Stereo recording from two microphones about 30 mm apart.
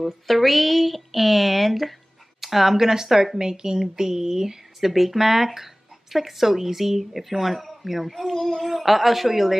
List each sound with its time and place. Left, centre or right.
0.0 s speech: centre
4.7 s speech: centre
8.3 s child singing: centre
8.7 s speech: centre